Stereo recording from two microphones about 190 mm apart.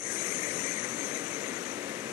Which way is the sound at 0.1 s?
15° right (ahead or behind).